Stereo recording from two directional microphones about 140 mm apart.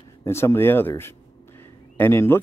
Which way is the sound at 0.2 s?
20° left (ahead or behind).